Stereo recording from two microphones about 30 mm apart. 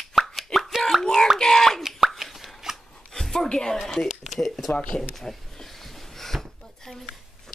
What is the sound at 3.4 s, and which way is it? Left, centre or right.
Speech, left.